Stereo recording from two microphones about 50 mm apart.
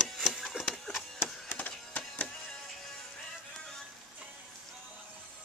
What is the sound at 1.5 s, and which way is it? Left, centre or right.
Music, left.